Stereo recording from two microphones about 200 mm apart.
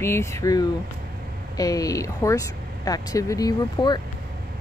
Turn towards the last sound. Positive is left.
turn(degrees=20)  # may be behind; listen again after turning